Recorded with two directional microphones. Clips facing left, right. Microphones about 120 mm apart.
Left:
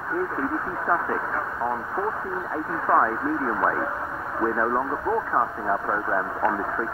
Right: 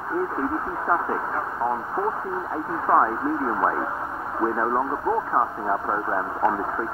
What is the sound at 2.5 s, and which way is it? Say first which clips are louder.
Speech: right 1 dB; 25° right (ahead or behind).